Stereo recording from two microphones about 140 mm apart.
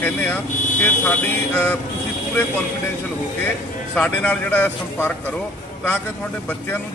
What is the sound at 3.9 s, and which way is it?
Speech, 10° left (ahead or behind).